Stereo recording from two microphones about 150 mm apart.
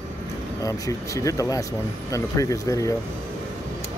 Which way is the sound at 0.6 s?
20° left (ahead or behind).